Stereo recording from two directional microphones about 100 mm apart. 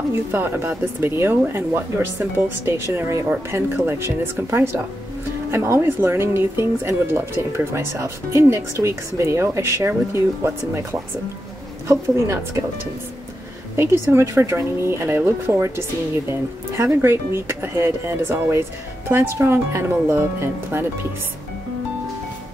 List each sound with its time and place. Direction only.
0.1 s speech: 20° right (ahead or behind)
13.7 s speech: 25° right (ahead or behind)